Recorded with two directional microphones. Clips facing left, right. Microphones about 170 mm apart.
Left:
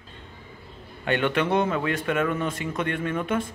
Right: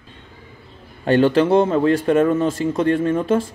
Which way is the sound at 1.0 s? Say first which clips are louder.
Right 9 dB; 35° right (ahead or behind).